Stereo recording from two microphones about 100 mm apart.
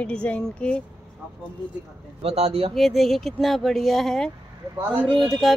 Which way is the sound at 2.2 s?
90° right.